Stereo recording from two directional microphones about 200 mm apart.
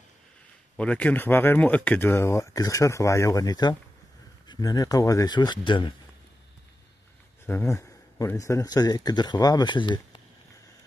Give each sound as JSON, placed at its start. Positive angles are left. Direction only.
{"t": 0.7, "sound": "speech", "side_deg": 5}
{"t": 7.4, "sound": "speech", "side_deg": 15}